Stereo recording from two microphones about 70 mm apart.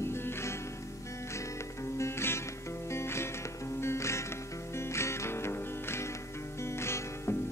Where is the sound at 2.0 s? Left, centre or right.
Left.